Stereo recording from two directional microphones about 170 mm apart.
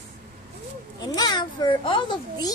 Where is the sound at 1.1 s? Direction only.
25° left (ahead or behind).